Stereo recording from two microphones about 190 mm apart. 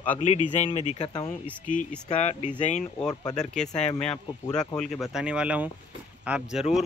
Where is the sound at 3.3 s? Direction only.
5° left (ahead or behind).